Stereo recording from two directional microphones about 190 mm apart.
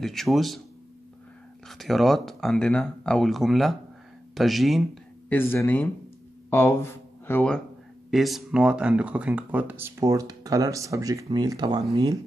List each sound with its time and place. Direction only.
0.0 s speech: centre (ahead or behind)
1.7 s speech: centre (ahead or behind)
5.3 s speech: 10° left (ahead or behind); by 12.2 s 20° right (ahead or behind)